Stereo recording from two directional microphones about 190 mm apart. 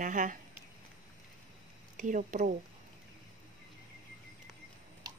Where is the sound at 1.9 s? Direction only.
40° right (ahead or behind).